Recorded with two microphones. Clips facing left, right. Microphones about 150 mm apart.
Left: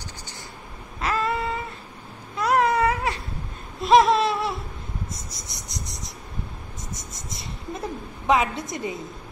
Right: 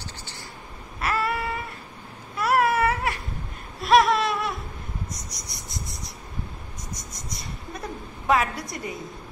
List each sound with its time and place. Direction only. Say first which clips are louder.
1.0 s a sound: left 1 dB; 20° left (ahead or behind)
2.3 s baby cry: left 1 dB; 20° left (ahead or behind)
3.8 s a sound: left 2 dB; 25° left (ahead or behind)
5.4 s cricket: even; centre (ahead or behind)
7.0 s writing: even; centre (ahead or behind)
8.3 s a woman's voice: left 1 dB; 20° left (ahead or behind)